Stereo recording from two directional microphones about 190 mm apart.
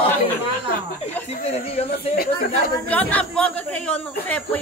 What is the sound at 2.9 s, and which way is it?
Speech, 10° left (ahead or behind).